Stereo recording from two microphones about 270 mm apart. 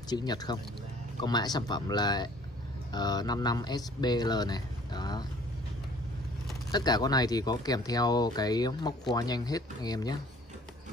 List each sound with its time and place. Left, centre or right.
0.1 s speech: centre
6.7 s speech: centre